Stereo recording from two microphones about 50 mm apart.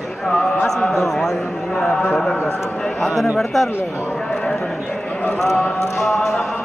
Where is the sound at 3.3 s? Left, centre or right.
Centre.